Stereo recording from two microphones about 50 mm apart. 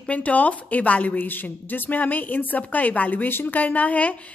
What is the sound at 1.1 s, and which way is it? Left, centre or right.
A woman's voice, left.